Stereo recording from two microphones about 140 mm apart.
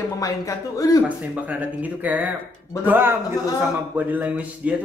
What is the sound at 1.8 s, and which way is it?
Speech, 10° right (ahead or behind).